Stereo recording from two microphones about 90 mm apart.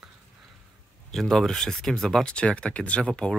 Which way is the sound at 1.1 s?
5° left (ahead or behind).